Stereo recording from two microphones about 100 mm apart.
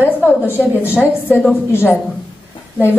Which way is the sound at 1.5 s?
20° left (ahead or behind).